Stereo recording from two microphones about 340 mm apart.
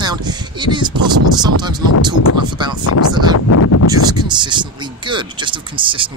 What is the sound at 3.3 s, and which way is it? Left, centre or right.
Speech, left.